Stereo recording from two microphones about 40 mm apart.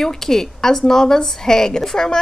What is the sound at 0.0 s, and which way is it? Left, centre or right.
A woman's voice, centre.